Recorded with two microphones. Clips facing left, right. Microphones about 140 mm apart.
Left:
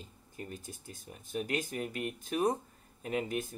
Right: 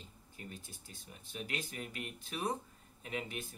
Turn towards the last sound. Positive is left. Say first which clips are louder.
# left 8 dB
turn(degrees=45)  # may be behind; listen again after turning